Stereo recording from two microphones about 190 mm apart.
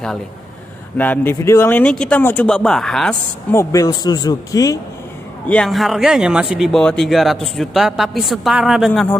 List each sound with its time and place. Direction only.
0.9 s speech: 10° left (ahead or behind)
3.5 s speech: 15° left (ahead or behind)
5.5 s speech: 5° left (ahead or behind)